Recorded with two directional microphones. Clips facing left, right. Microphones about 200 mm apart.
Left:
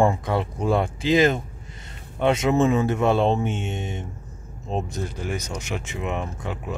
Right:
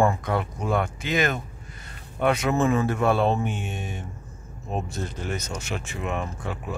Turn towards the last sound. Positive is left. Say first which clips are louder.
# left 1 dB
turn(degrees=20)  # may be behind; listen again after turning